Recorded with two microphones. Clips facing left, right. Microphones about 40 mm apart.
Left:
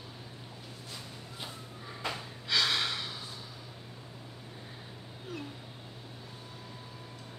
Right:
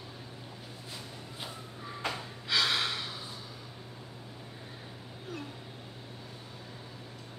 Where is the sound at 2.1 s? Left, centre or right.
Centre.